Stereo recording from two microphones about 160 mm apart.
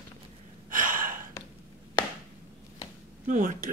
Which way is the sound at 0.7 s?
60° right (ahead or behind).